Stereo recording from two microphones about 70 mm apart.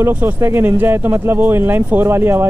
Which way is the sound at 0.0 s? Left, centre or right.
Right.